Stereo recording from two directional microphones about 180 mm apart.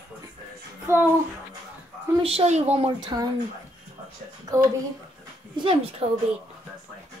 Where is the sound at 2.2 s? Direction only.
35° right (ahead or behind).